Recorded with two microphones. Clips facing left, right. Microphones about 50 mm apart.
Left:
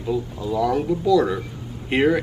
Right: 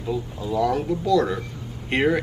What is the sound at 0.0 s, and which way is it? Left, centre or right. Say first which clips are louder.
Speech: left 3 dB; centre.